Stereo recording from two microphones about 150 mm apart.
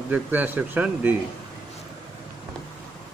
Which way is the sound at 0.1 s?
10° right (ahead or behind).